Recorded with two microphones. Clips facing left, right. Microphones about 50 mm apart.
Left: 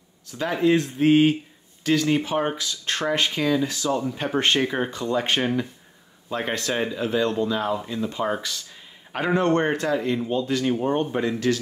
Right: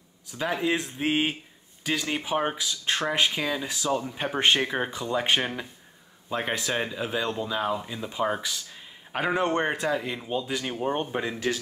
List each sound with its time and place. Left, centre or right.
0.3 s speech: centre